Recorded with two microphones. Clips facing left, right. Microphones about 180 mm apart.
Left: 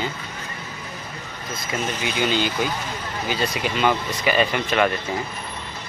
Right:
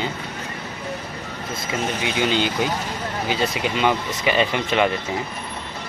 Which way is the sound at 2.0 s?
20° right (ahead or behind).